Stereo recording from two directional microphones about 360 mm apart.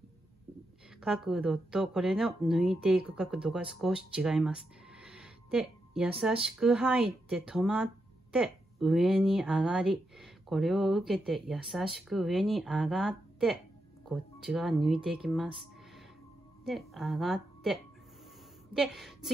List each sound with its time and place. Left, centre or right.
1.0 s a woman's voice: centre
18.8 s speech: centre